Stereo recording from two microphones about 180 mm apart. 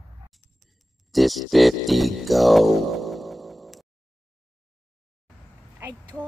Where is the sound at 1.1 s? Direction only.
Centre (ahead or behind).